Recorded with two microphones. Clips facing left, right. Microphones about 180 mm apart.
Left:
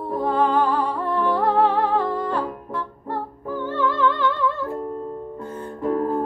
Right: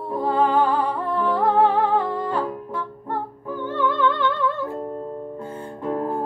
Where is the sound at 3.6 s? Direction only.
Centre (ahead or behind).